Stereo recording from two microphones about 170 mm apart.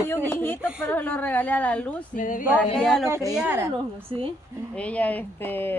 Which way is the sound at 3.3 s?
10° right (ahead or behind).